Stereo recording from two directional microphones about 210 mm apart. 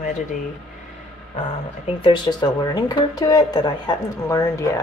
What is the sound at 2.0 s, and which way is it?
Speech, 20° left (ahead or behind).